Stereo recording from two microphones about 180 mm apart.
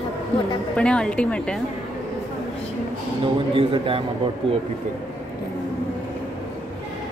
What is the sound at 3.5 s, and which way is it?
Speech, 30° right (ahead or behind).